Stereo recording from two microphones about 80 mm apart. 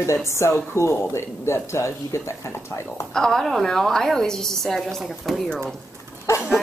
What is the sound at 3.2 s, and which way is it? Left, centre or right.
A woman's voice, centre.